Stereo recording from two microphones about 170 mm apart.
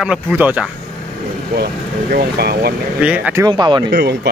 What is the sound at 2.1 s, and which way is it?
Speech, 65° right (ahead or behind).